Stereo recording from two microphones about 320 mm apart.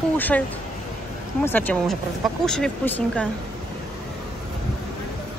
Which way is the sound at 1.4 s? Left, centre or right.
Centre.